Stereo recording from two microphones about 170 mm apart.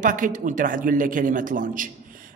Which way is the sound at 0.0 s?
50° right (ahead or behind).